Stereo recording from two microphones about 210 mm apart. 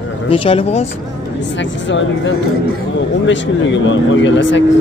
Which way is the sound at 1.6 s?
60° left (ahead or behind).